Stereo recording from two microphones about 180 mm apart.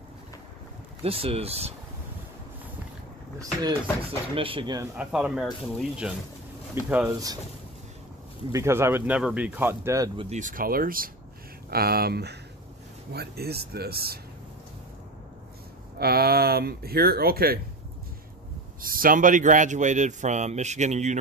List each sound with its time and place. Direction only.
1.0 s speech: 30° right (ahead or behind)
4.4 s speech: 30° right (ahead or behind)
4.9 s speech: 5° right (ahead or behind)
8.5 s speech: 15° right (ahead or behind)
10.3 s a man's voice: 50° right (ahead or behind)
16.0 s speech: 60° right (ahead or behind)
18.8 s a man's voice: 50° right (ahead or behind)